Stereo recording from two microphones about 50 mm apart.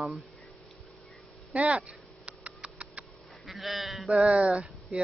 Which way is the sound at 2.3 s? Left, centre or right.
Right.